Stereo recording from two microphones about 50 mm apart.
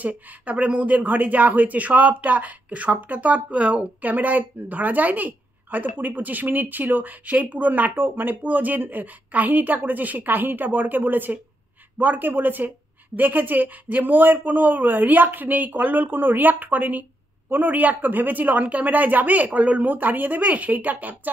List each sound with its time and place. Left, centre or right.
0.0 s a woman's voice: right